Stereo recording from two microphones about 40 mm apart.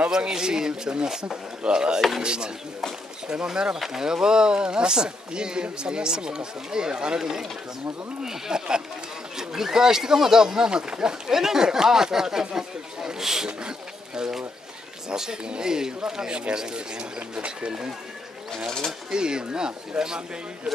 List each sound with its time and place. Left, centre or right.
0.3 s speech: centre
2.0 s speech: centre
2.2 s speech: right
3.8 s speech: centre
7.2 s speech: centre
13.5 s speech: right
19.0 s speech: right